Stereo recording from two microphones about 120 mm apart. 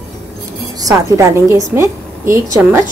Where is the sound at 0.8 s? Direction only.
30° right (ahead or behind).